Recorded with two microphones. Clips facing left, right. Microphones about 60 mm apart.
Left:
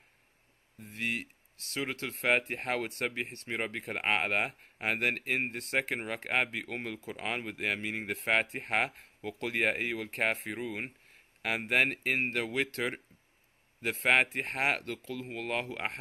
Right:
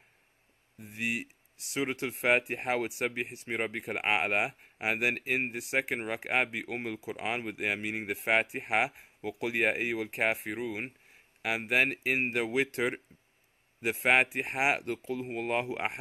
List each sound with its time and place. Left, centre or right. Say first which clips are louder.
0.7 s speech: right 1 dB; centre